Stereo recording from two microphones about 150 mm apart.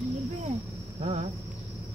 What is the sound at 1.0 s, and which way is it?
Cricket, 50° right (ahead or behind).